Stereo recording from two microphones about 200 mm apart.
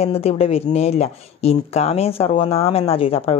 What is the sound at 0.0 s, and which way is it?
Speech, 30° left (ahead or behind).